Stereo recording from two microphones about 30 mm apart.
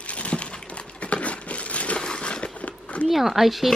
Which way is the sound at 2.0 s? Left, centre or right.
Left.